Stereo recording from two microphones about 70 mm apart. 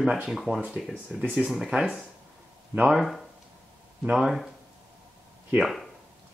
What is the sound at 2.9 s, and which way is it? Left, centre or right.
Speech, centre.